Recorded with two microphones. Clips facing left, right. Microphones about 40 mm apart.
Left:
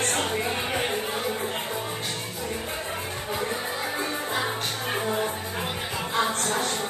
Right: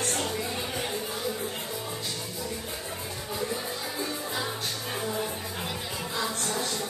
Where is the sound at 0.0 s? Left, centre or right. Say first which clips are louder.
Left 4 dB; left.